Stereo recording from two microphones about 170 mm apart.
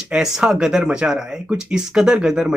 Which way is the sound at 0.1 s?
5° right (ahead or behind).